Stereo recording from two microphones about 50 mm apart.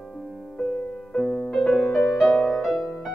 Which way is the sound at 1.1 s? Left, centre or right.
Centre.